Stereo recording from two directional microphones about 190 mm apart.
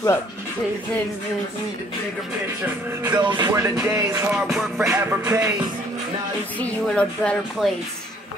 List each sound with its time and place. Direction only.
3.0 s music: 20° right (ahead or behind)
4.3 s speech: centre (ahead or behind)
4.8 s music: 10° right (ahead or behind)
6.6 s speech: 5° left (ahead or behind)